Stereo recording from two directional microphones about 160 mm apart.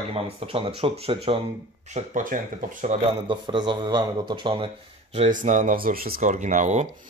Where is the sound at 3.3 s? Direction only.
30° right (ahead or behind).